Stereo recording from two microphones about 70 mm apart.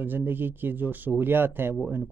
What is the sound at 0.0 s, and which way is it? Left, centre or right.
Speech, right.